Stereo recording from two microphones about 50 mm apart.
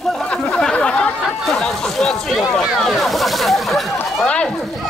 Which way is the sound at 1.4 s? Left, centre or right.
Centre.